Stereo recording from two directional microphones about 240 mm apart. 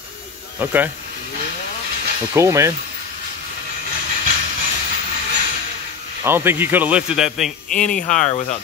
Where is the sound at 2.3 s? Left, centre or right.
Centre.